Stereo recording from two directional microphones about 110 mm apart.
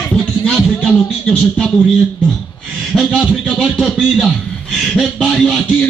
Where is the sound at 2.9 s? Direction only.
5° left (ahead or behind).